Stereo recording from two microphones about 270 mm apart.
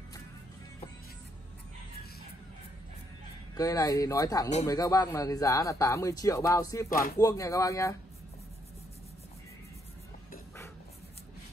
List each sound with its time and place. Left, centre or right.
3.5 s speech: centre
6.9 s music: left
7.2 s speech: centre